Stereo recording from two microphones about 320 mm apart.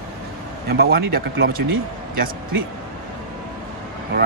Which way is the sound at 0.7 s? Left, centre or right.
Right.